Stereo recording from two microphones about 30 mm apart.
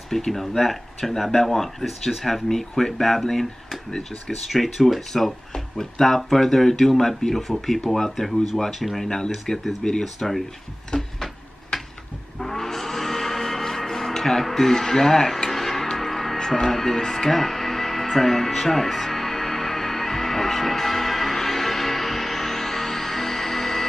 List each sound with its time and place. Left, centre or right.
0.1 s speech: centre
4.5 s speech: centre
5.5 s speech: centre
9.5 s speech: centre
10.9 s a sound: centre
12.4 s music: centre
14.5 s speech: centre
16.0 s music: centre
16.3 s speech: left
17.3 s music: centre